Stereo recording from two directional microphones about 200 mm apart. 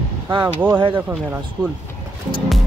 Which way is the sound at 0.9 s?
10° right (ahead or behind).